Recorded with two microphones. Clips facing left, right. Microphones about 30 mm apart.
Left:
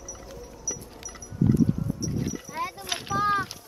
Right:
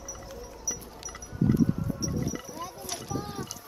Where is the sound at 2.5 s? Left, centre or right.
Left.